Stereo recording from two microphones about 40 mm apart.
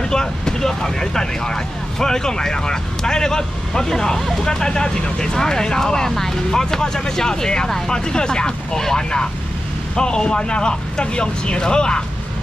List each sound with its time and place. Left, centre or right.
0.0 s speech: centre